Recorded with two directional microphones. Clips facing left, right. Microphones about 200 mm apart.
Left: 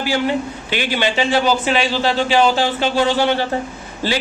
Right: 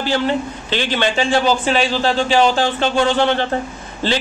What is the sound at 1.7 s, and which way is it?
Speech, 40° right (ahead or behind).